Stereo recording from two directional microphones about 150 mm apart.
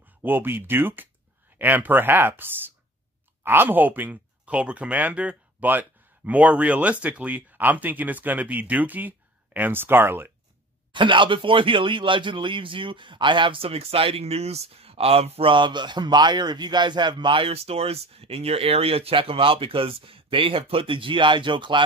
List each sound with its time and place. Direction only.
0.2 s speech: 15° right (ahead or behind)
10.9 s speech: 35° right (ahead or behind)